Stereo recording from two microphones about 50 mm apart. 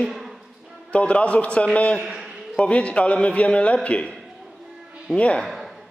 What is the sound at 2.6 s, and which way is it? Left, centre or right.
A man's voice, left.